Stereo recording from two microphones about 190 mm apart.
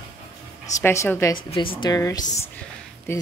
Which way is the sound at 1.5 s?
25° left (ahead or behind).